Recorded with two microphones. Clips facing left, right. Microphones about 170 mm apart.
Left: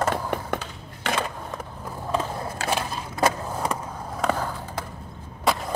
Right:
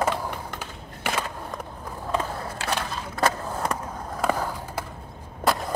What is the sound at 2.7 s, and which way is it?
Crushing, 15° left (ahead or behind).